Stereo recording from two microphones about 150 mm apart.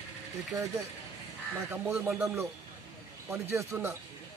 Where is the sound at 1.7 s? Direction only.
10° right (ahead or behind).